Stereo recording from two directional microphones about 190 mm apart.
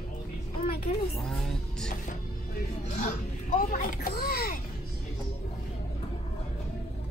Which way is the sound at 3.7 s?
50° left (ahead or behind).